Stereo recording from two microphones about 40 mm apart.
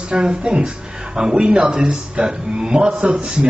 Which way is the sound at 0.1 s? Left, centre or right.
Right.